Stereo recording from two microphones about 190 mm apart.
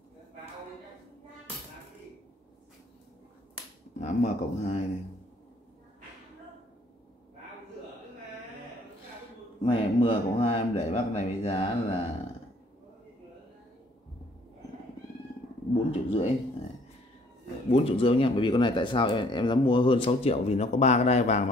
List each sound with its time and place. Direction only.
4.0 s speech: 35° left (ahead or behind)
9.6 s speech: 30° left (ahead or behind)
15.9 s speech: 30° left (ahead or behind)
17.6 s speech: 30° left (ahead or behind)